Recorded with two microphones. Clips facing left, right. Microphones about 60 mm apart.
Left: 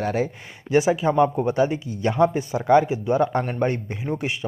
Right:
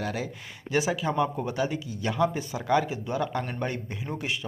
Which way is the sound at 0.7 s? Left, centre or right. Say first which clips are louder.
Left 7 dB; left.